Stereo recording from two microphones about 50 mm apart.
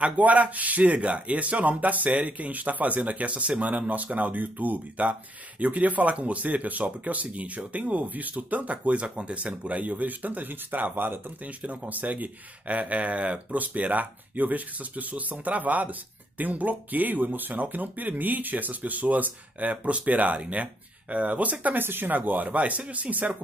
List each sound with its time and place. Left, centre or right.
0.2 s speech: right
11.4 s speech: right
21.8 s speech: right